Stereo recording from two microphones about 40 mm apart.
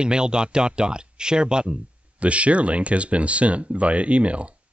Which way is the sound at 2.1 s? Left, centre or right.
Right.